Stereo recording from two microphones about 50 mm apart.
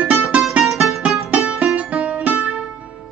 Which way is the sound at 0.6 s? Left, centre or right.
Centre.